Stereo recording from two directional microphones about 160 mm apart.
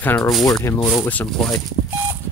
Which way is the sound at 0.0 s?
10° left (ahead or behind).